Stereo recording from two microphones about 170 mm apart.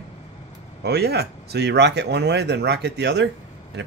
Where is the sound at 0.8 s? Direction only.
75° right (ahead or behind).